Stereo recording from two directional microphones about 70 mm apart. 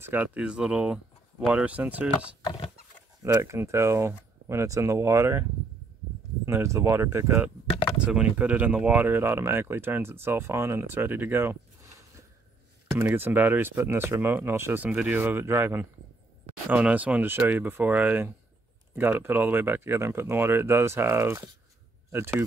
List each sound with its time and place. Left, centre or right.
0.0 s speech: right
0.4 s speech: centre
3.2 s speech: right
8.0 s speech: centre; by 11.9 s right
11.9 s a sound: right
13.0 s speech: right
16.8 s speech: centre; by 22.4 s right